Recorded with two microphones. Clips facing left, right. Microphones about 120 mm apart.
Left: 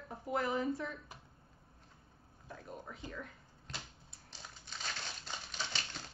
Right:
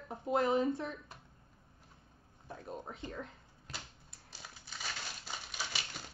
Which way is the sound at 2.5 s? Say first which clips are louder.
Right 3 dB; 25° right (ahead or behind).